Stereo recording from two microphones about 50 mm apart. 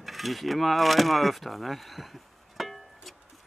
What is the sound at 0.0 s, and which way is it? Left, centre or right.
Speech, centre.